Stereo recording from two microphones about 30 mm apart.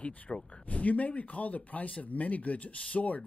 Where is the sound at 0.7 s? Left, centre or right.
Left.